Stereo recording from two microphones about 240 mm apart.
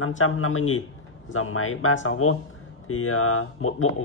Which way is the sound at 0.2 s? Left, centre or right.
Left.